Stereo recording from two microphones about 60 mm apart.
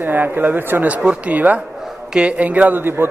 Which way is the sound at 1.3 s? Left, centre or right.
Right.